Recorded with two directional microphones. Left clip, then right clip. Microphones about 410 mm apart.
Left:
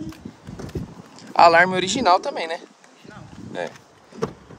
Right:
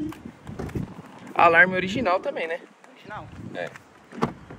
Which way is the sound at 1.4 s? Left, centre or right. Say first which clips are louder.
Left 3 dB; centre.